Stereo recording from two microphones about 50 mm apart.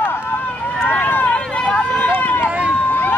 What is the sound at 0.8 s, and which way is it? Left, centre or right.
Run, left.